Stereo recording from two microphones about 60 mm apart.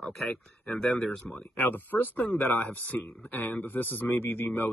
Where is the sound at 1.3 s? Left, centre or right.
Left.